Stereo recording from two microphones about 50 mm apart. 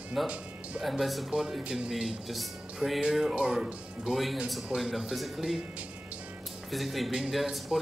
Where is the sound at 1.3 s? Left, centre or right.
Centre.